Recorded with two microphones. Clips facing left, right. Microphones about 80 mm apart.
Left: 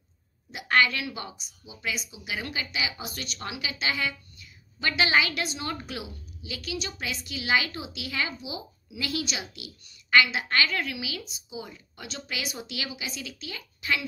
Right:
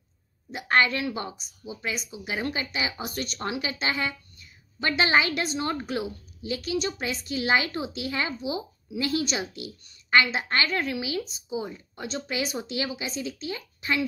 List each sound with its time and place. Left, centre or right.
0.5 s speech: right